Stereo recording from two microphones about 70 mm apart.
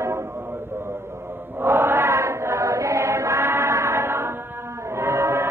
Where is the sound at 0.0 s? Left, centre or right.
Right.